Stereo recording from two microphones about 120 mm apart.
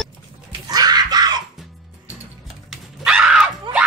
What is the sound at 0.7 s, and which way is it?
Screaming, 35° right (ahead or behind).